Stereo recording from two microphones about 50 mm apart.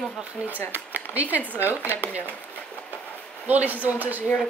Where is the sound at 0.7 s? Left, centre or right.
Right.